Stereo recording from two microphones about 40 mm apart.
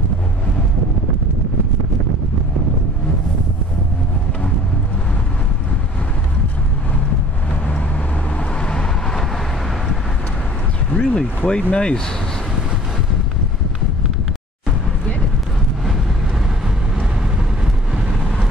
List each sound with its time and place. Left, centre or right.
8.4 s vehicle: left
10.9 s a sound: left
11.1 s speech: left
17.9 s vehicle: centre